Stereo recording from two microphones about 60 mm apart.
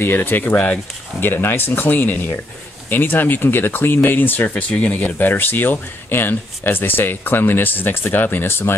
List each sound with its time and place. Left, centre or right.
0.0 s speech: left